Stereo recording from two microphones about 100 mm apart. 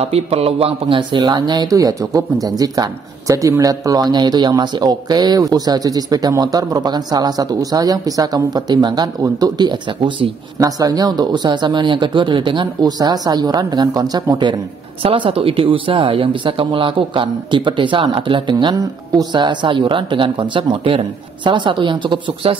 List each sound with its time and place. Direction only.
0.0 s speech: 90° right; by 10.3 s 50° right (ahead or behind)
10.6 s speech: 40° right (ahead or behind)
15.0 s speech: 65° right (ahead or behind)